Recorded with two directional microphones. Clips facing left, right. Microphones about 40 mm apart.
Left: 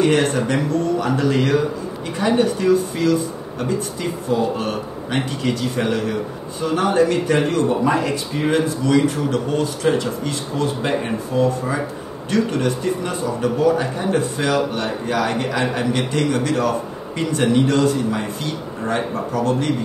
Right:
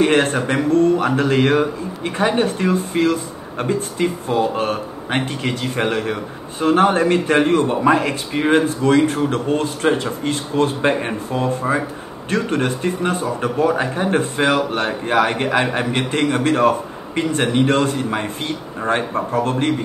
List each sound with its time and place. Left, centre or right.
0.0 s a man's voice: right